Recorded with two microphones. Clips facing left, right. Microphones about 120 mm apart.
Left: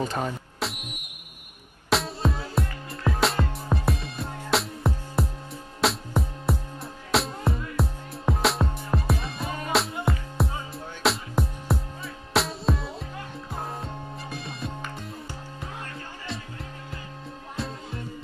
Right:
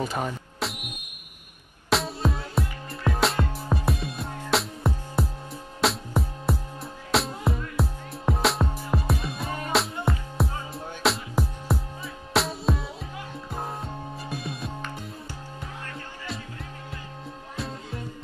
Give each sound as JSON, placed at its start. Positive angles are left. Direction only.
{"t": 0.0, "sound": "music", "side_deg": -5}
{"t": 1.9, "sound": "music", "side_deg": 0}